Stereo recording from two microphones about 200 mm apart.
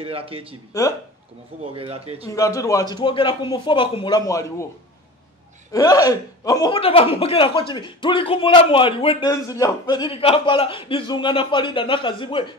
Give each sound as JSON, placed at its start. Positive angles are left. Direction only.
{"t": 0.0, "sound": "speech", "side_deg": -30}
{"t": 1.7, "sound": "speech", "side_deg": -30}
{"t": 2.2, "sound": "speech", "side_deg": 15}
{"t": 5.7, "sound": "speech", "side_deg": 20}